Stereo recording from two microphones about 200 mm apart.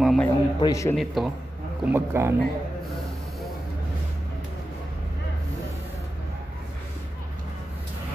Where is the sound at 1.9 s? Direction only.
15° right (ahead or behind).